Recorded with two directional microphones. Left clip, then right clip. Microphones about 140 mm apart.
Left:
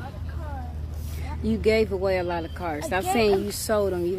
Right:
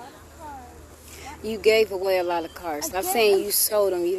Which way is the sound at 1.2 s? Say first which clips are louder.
Right 3 dB; 10° right (ahead or behind).